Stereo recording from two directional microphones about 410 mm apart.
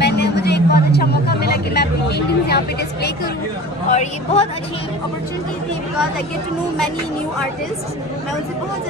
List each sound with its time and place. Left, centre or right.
0.0 s vehicle: left
3.9 s a woman's voice: centre